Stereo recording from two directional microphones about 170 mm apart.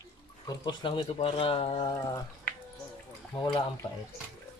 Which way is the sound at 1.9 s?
15° left (ahead or behind).